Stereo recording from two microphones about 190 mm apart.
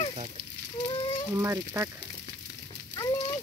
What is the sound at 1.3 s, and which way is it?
Speech, 15° right (ahead or behind).